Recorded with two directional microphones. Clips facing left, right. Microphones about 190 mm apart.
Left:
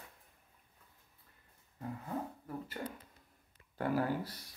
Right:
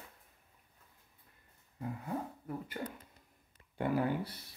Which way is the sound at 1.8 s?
10° right (ahead or behind).